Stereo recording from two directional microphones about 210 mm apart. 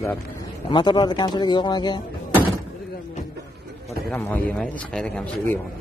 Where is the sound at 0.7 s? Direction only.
20° left (ahead or behind).